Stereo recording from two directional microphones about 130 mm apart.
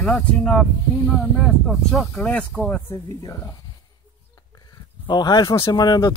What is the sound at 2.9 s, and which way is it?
Speech, 25° left (ahead or behind).